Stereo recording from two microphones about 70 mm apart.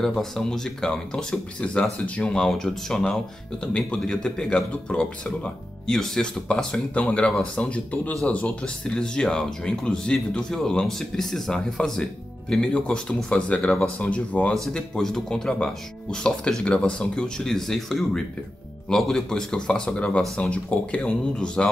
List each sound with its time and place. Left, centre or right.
0.2 s speech: centre
1.6 s speech: centre
14.5 s speech: centre